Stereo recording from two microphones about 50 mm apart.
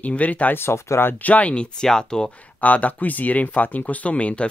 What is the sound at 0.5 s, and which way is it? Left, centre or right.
Speech, left.